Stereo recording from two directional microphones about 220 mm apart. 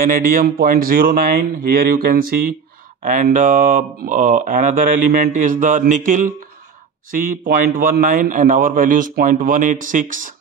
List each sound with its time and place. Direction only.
0.0 s speech: 40° right (ahead or behind)